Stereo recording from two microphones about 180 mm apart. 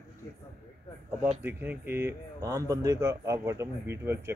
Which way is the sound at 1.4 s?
10° right (ahead or behind).